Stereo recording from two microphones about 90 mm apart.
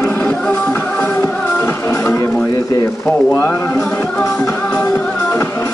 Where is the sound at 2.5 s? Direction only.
35° left (ahead or behind).